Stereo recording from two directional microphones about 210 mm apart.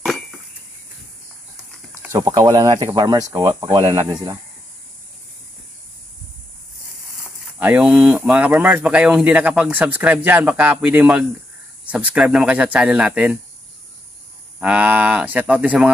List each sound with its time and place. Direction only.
0.0 s a sound: centre (ahead or behind)
2.0 s speech: 15° right (ahead or behind)
7.5 s speech: 5° right (ahead or behind)
14.6 s speech: 5° right (ahead or behind)